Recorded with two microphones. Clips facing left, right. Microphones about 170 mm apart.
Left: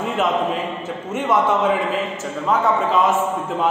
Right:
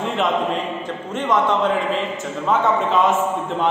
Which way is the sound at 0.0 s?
Centre (ahead or behind).